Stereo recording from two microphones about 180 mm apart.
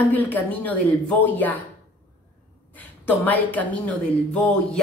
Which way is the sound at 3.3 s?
10° left (ahead or behind).